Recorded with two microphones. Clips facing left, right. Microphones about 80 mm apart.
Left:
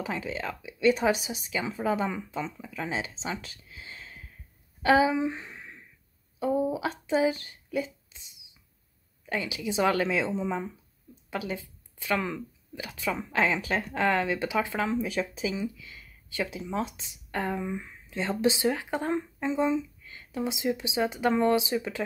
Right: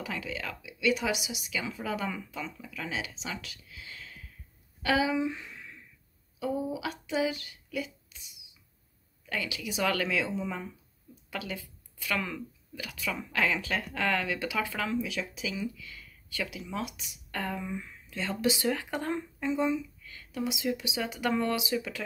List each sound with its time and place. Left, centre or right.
0.0 s speech: left
15.0 s speech: left